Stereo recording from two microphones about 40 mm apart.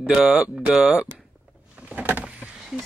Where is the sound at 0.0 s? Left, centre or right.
Centre.